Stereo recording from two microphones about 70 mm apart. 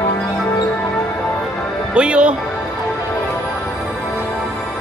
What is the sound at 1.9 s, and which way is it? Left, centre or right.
Speech, centre.